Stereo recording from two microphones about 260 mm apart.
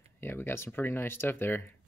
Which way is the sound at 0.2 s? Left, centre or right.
Centre.